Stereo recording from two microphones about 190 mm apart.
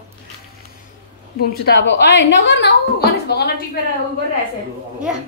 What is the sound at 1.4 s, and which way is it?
A woman's voice, 60° left (ahead or behind).